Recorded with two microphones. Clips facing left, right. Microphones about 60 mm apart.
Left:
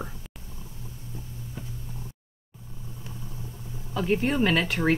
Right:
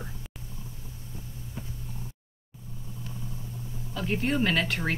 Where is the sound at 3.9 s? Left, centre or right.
Centre.